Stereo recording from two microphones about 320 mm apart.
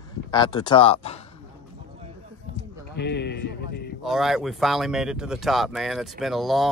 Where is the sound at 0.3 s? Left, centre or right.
Centre.